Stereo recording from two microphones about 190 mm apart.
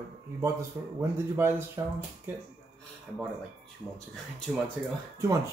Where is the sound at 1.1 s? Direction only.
15° right (ahead or behind).